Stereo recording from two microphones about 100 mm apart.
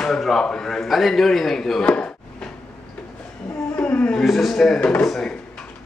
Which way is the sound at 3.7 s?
15° left (ahead or behind).